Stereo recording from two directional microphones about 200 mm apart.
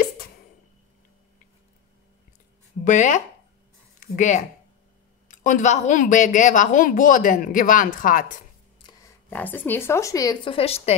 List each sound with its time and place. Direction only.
2.8 s a woman's voice: 40° left (ahead or behind)
8.8 s a sound: 20° left (ahead or behind)
9.3 s speech: 10° left (ahead or behind); by 11.0 s 30° left (ahead or behind)